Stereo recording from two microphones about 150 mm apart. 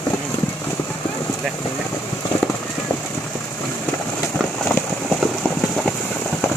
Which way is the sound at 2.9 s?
15° left (ahead or behind).